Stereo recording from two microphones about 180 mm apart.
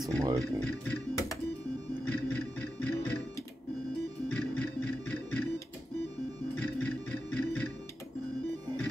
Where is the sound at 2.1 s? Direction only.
10° left (ahead or behind).